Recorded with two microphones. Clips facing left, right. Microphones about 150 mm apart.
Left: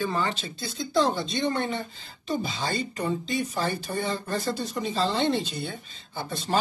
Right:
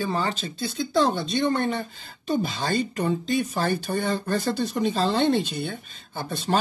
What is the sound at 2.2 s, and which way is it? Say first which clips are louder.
Speech: right 4 dB; 55° right (ahead or behind).